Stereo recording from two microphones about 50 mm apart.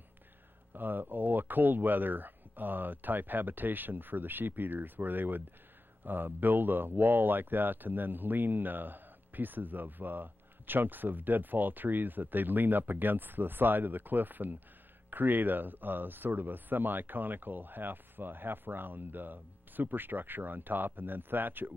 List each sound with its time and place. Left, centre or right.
0.7 s speech: right